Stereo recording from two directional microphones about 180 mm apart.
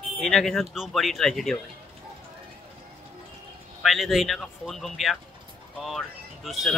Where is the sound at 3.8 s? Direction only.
Centre (ahead or behind).